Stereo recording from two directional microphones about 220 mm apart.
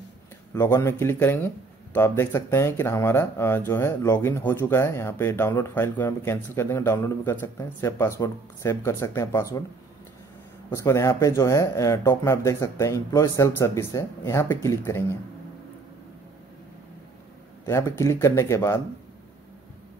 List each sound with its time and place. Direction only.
0.6 s speech: 10° left (ahead or behind)
10.7 s speech: 15° left (ahead or behind)
17.6 s speech: 10° left (ahead or behind)